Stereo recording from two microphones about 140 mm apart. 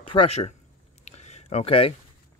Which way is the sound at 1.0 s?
50° left (ahead or behind).